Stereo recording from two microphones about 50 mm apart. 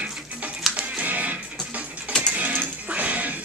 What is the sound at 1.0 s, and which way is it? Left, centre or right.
Music, right.